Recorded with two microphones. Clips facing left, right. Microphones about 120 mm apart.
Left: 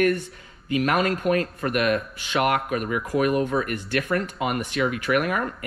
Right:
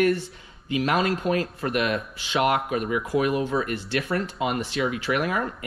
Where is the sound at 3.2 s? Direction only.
50° left (ahead or behind).